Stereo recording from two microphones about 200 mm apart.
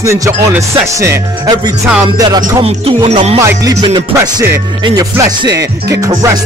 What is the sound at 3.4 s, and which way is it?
Music, 15° right (ahead or behind).